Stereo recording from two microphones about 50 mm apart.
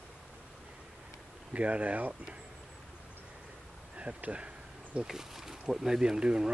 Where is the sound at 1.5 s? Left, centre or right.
Right.